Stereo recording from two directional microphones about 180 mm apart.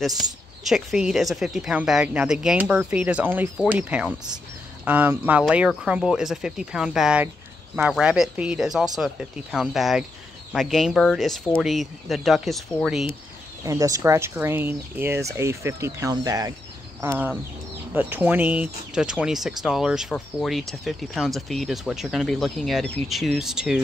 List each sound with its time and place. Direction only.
0.2 s speech: centre (ahead or behind)
13.7 s speech: 20° right (ahead or behind); by 23.8 s 5° right (ahead or behind)